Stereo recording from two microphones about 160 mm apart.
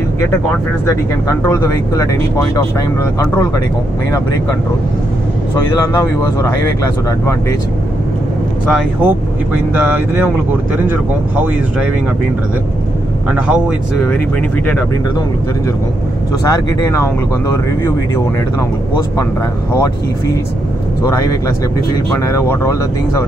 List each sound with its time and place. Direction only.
1.4 s speech: 15° left (ahead or behind)
5.9 s speech: 25° left (ahead or behind)
8.7 s speech: 10° right (ahead or behind)
13.3 s speech: 5° right (ahead or behind)
16.4 s speech: 20° left (ahead or behind)
21.0 s speech: 20° left (ahead or behind)